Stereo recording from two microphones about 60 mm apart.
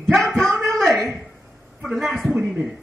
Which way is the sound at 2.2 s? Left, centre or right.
Centre.